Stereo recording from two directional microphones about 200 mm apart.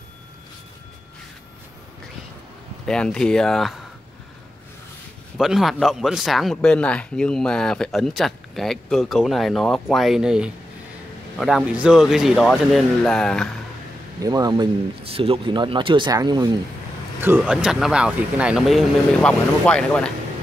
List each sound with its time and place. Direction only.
2.9 s speech: 5° left (ahead or behind)
5.4 s speech: centre (ahead or behind)
14.2 s speech: 20° right (ahead or behind)
17.2 s speech: 10° right (ahead or behind)